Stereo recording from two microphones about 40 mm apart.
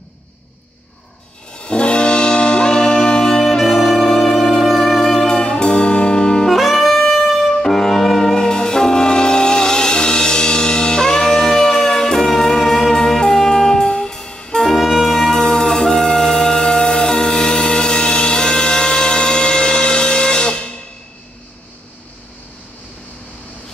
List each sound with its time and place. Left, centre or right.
1.5 s brass instrument: left
3.5 s saxophone: centre
4.1 s music: centre
4.7 s brass instrument: centre
6.5 s music: centre; by 20.7 s left